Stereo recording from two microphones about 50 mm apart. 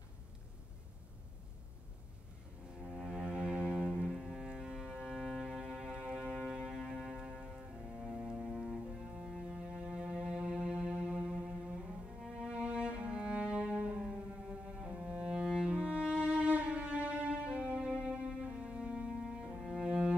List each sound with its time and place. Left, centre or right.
2.8 s cello: centre
4.1 s cello: centre
4.5 s music: centre
5.9 s music: centre
8.5 s cello: centre
9.5 s music: right
14.0 s music: centre
19.8 s cello: centre